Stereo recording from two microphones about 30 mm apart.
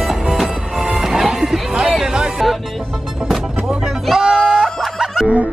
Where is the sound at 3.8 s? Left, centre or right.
Centre.